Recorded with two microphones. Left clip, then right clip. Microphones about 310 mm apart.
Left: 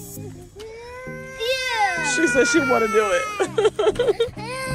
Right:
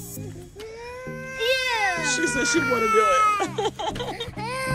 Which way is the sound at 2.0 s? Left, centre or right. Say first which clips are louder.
Left 5 dB; centre.